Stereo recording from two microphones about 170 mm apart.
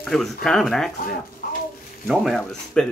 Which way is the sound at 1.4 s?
60° left (ahead or behind).